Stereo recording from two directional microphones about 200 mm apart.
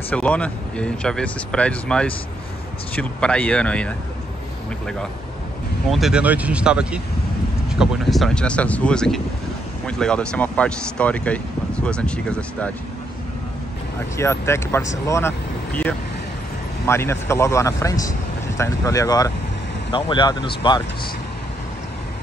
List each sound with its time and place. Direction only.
0.1 s speech: 5° left (ahead or behind)
5.9 s speech: centre (ahead or behind)
14.1 s speech: 15° left (ahead or behind)